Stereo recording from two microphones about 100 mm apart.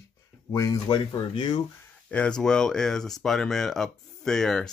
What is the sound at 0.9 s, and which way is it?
Speech, 55° left (ahead or behind).